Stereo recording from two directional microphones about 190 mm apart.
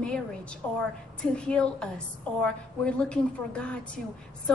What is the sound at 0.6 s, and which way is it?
A woman's voice, 5° left (ahead or behind).